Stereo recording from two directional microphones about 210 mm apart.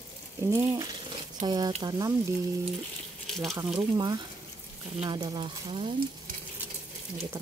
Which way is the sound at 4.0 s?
20° right (ahead or behind).